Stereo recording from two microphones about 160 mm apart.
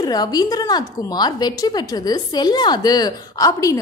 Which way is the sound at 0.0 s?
25° left (ahead or behind).